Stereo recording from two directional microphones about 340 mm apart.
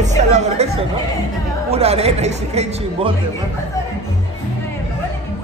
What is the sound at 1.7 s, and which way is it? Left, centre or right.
Speech, centre.